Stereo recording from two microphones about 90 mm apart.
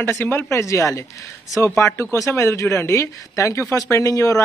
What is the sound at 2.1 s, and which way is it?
A man's voice, 35° left (ahead or behind).